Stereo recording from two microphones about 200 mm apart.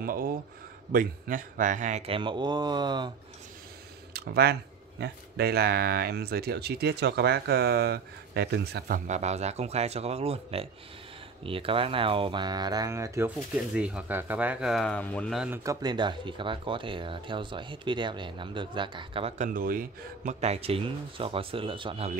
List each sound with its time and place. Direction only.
0.0 s speech: 45° right (ahead or behind); by 3.1 s 20° right (ahead or behind)
4.1 s speech: 50° right (ahead or behind); by 15.6 s 5° right (ahead or behind)
15.6 s speech: 20° right (ahead or behind)